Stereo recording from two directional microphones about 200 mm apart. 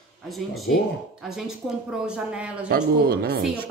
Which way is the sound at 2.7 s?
50° right (ahead or behind).